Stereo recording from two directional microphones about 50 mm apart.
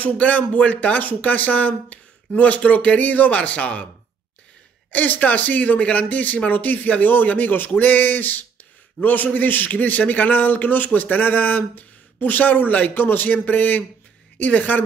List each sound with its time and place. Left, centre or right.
0.0 s a man's voice: left
4.9 s a man's voice: left